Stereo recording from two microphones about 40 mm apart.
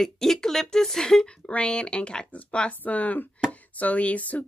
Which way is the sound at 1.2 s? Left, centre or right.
Left.